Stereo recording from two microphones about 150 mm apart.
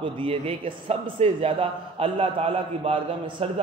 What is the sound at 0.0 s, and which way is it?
A man's voice, 35° right (ahead or behind).